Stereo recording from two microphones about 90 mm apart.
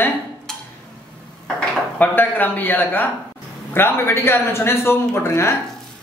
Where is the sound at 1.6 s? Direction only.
20° left (ahead or behind).